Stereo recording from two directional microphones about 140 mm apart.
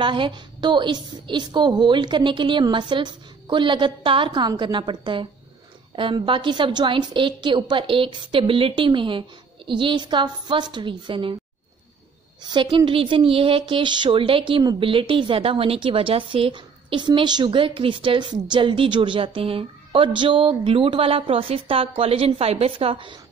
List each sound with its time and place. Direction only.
0.0 s speech: 35° right (ahead or behind)
12.4 s speech: 35° right (ahead or behind)